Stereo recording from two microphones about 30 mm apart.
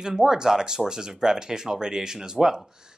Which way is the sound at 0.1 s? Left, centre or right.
Centre.